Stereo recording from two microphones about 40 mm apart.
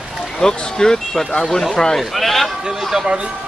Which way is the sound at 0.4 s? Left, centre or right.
Centre.